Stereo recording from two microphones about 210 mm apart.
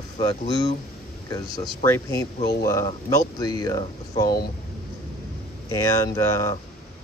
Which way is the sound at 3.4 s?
20° left (ahead or behind).